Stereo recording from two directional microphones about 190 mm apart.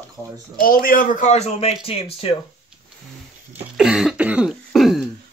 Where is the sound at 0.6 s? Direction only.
45° left (ahead or behind); by 2.3 s 30° left (ahead or behind).